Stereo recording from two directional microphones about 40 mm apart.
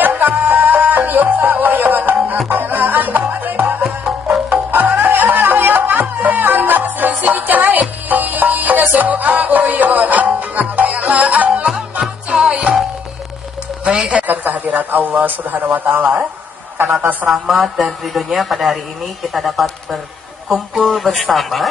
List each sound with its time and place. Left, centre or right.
0.0 s music: right
12.3 s music: right
13.8 s a sound: right
14.2 s a man's voice: right
17.3 s a woman's voice: centre